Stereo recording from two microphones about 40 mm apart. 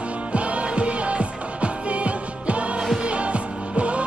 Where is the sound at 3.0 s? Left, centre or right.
Right.